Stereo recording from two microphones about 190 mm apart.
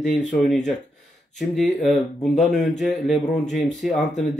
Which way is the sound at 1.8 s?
40° left (ahead or behind).